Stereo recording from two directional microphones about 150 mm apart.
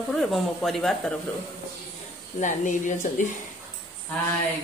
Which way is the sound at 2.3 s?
55° left (ahead or behind).